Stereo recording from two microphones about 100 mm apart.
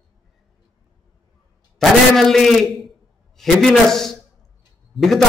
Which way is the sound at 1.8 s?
5° left (ahead or behind).